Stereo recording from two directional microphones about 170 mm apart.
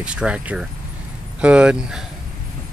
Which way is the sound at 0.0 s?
5° right (ahead or behind).